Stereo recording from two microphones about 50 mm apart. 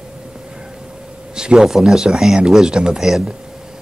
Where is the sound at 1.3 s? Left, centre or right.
Centre.